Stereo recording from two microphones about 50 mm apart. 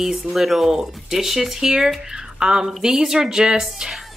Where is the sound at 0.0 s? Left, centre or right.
Centre.